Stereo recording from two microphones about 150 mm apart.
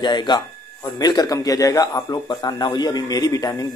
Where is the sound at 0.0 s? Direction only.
30° left (ahead or behind).